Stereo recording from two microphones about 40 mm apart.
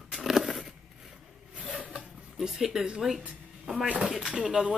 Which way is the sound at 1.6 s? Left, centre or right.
Right.